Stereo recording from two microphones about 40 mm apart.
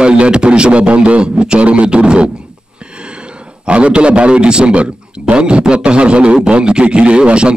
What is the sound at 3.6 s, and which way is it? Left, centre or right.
A man's voice, right.